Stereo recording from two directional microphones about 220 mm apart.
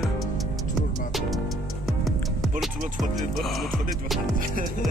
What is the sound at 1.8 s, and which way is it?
Music, centre (ahead or behind).